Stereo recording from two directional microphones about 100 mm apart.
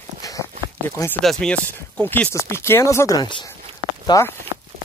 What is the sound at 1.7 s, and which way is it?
Speech, 20° left (ahead or behind).